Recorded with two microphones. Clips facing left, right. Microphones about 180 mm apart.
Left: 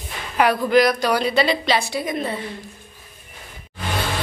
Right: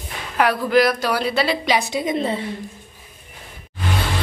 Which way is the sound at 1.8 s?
20° right (ahead or behind).